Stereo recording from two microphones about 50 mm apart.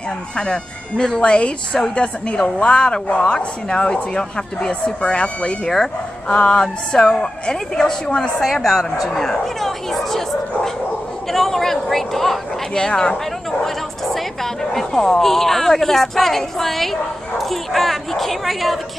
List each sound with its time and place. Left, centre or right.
0.4 s a woman's voice: centre
12.7 s speech: centre